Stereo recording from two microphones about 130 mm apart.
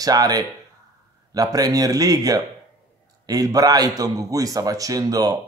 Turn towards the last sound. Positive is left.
turn(degrees=-30)  # may be behind; listen again after turning